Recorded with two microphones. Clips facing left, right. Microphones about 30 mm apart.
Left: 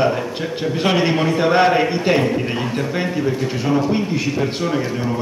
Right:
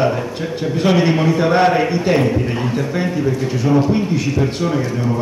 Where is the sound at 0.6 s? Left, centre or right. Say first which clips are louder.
Right 2 dB; centre.